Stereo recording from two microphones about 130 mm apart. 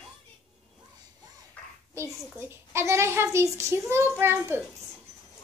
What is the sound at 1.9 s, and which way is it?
A woman's voice, 20° right (ahead or behind).